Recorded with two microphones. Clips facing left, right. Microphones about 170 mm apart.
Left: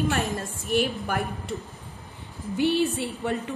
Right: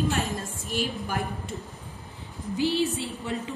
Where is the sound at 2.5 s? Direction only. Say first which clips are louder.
Left 2 dB; 60° left (ahead or behind).